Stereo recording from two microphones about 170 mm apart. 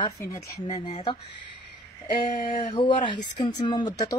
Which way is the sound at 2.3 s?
35° left (ahead or behind).